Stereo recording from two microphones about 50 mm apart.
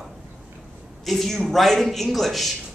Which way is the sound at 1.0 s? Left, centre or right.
Centre.